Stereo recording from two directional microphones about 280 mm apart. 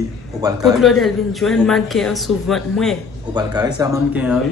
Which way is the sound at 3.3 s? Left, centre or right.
Centre.